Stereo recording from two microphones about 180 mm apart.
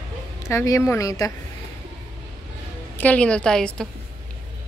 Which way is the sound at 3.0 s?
5° left (ahead or behind).